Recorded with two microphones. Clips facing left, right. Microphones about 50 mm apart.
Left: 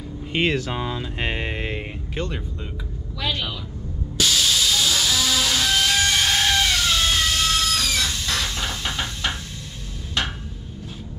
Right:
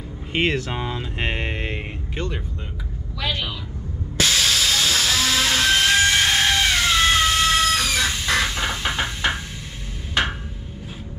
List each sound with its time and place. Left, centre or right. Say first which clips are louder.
0.4 s speech: even; right
0.7 s mantra: even; centre
4.2 s hiss: right 1 dB; right
5.9 s music: right 3 dB; right